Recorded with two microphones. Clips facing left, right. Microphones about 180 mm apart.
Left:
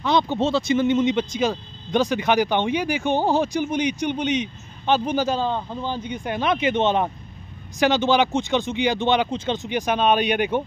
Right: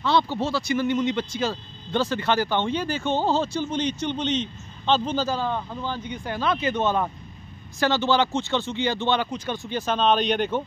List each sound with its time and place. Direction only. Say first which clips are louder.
0.0 s speech: left 2 dB; 15° left (ahead or behind)